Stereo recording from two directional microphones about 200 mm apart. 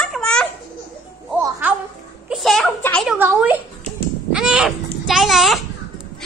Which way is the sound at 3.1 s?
10° right (ahead or behind).